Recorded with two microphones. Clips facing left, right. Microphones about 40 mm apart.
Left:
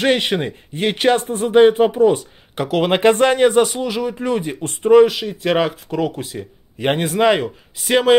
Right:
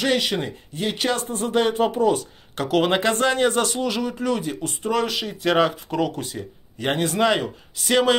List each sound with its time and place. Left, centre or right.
0.0 s speech: left
1.4 s speech: left
2.9 s speech: left
3.4 s speech: centre
4.2 s speech: left
5.0 s speech: centre
6.8 s speech: left